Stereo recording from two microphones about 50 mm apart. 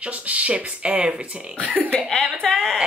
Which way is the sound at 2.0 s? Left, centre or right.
Centre.